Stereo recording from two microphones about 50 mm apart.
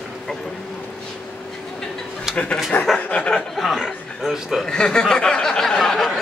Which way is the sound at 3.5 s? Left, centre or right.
Centre.